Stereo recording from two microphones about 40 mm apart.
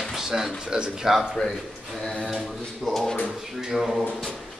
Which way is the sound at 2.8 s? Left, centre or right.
Centre.